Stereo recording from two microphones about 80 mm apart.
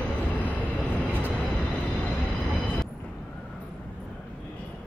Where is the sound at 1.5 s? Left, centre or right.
Centre.